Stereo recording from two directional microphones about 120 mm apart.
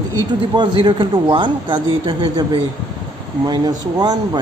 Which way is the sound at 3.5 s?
35° right (ahead or behind).